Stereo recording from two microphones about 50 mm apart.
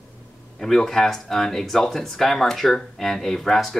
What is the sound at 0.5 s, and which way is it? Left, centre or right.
Speech, centre.